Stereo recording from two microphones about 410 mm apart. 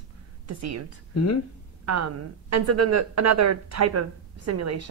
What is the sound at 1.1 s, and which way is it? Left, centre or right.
Speech, left.